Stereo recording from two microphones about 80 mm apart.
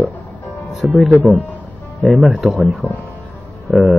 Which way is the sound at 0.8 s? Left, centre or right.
Centre.